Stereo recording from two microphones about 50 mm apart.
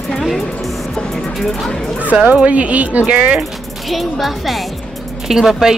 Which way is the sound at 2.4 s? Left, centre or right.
Right.